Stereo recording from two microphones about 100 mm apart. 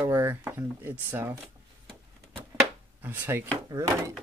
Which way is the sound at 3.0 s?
20° right (ahead or behind).